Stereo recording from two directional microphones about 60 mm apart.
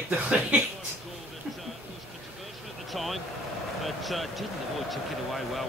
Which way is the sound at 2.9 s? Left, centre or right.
Centre.